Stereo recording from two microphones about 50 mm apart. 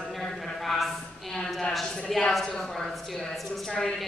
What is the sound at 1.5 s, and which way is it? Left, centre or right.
A woman's voice, centre.